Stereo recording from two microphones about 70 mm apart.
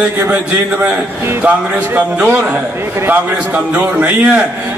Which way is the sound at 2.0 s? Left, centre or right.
Centre.